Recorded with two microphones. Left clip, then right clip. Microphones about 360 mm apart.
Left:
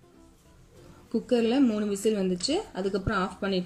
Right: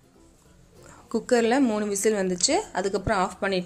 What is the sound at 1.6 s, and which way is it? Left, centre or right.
Speech, right.